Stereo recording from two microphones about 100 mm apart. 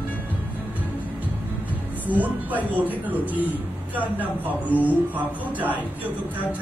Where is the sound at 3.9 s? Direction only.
15° right (ahead or behind).